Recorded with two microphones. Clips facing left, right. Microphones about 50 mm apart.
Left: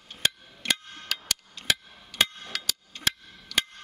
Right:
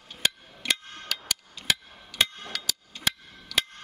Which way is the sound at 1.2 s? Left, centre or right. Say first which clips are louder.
Even; centre.